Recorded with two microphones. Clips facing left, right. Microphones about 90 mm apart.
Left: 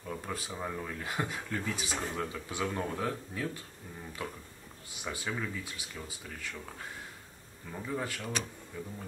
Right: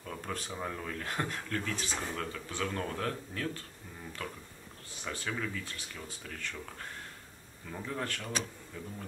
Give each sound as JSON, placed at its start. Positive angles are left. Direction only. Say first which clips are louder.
{"t": 0.0, "sound": "speech", "louder": "left 1 dB", "side_deg": 10}